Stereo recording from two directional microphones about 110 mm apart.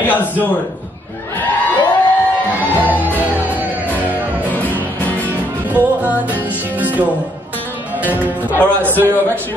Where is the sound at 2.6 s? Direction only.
15° right (ahead or behind).